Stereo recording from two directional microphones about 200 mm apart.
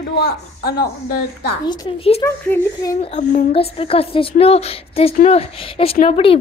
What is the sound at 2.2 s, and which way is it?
Speech, 15° left (ahead or behind).